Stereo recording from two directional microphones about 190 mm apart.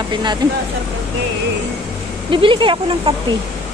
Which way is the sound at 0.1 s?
25° right (ahead or behind).